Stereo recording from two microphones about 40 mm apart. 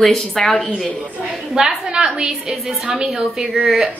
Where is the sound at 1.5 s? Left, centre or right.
Centre.